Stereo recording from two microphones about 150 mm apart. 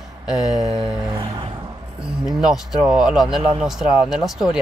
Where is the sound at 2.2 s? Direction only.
5° right (ahead or behind).